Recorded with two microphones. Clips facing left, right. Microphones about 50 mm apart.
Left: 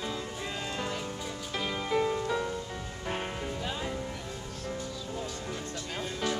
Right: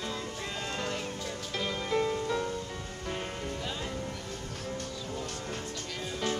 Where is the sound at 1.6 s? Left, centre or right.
Centre.